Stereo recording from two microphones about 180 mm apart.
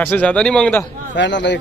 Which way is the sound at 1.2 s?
80° left.